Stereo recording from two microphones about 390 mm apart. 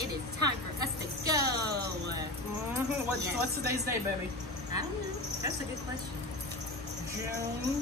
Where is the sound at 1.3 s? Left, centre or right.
Left.